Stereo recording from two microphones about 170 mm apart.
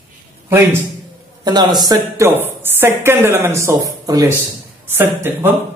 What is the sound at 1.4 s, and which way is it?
A woman's voice, 25° right (ahead or behind).